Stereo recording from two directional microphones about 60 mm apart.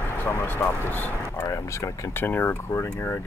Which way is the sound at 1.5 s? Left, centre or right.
Left.